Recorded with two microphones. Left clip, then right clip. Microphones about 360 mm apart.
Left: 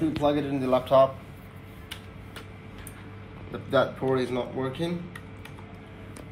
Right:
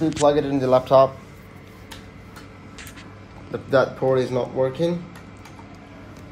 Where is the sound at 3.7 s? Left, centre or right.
Right.